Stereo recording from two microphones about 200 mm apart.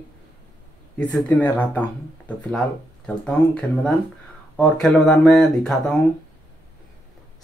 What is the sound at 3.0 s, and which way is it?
Speech, 5° left (ahead or behind).